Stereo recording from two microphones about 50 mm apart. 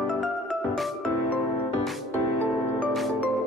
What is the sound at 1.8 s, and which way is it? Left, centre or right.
Music, centre.